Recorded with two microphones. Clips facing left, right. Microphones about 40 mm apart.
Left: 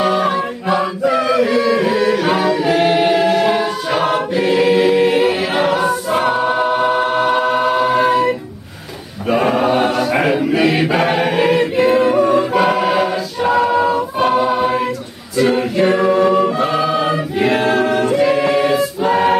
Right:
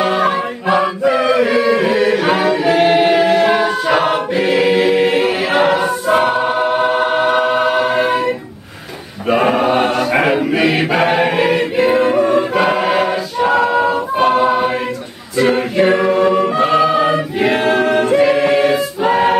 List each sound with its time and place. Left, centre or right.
0.0 s chant: centre
4.4 s choir: centre
9.3 s choir: centre
14.1 s choir: centre